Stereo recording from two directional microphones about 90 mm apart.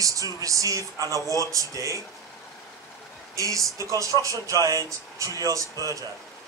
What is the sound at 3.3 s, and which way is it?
Speech, 40° right (ahead or behind).